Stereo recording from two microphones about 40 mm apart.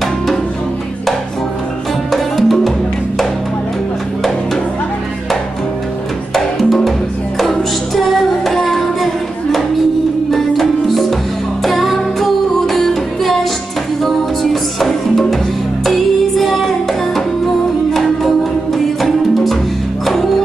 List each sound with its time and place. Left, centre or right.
2.1 s music: centre
6.3 s music: centre